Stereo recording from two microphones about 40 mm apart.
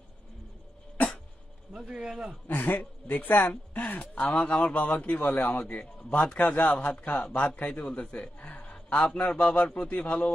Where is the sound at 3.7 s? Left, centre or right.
Left.